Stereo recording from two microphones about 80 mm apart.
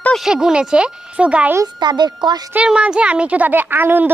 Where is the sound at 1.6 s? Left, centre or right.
Right.